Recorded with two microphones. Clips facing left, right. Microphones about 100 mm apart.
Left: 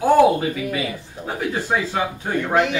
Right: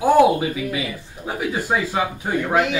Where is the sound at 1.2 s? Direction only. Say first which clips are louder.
Even; 5° right (ahead or behind).